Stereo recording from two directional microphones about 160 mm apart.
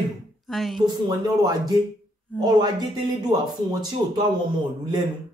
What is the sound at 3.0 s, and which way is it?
Speech, 25° right (ahead or behind).